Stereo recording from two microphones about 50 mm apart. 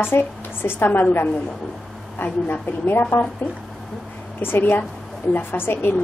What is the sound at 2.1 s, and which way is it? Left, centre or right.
A woman's voice, left.